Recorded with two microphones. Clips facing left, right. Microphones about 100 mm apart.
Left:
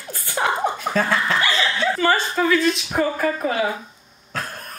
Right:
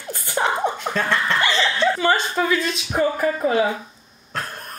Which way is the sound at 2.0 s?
20° right (ahead or behind).